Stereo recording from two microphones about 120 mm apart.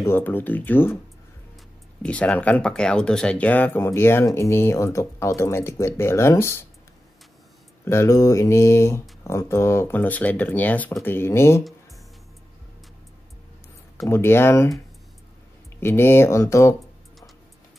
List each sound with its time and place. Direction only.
0.0 s speech: 15° left (ahead or behind)
2.0 s speech: 10° left (ahead or behind)
7.8 s speech: 20° left (ahead or behind)
13.9 s speech: 20° left (ahead or behind)
15.8 s speech: 20° left (ahead or behind)